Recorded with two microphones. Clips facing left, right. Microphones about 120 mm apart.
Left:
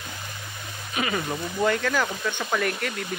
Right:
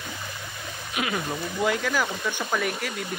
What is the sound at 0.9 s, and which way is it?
Speech, 5° right (ahead or behind).